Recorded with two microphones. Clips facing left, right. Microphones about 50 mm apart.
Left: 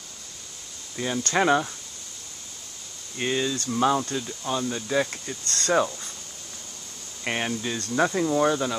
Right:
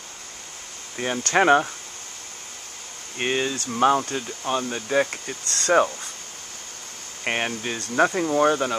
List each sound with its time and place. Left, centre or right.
0.9 s speech: right
3.2 s speech: right
7.2 s speech: right